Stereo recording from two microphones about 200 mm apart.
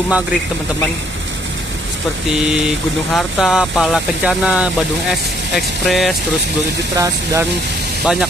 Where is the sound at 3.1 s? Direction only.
Centre (ahead or behind).